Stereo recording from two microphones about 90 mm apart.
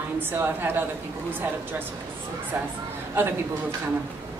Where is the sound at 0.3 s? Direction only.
25° right (ahead or behind).